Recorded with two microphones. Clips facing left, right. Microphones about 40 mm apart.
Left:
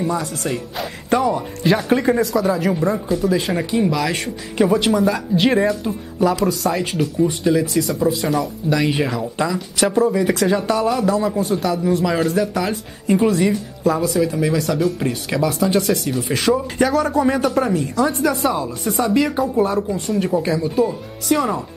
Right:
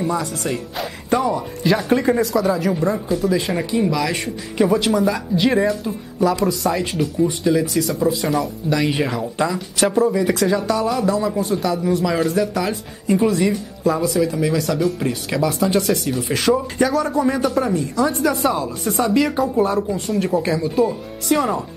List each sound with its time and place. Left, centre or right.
0.4 s speech: centre
10.4 s speech: centre
10.8 s speech: centre